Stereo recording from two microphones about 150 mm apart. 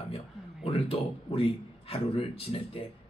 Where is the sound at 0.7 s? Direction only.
40° left (ahead or behind).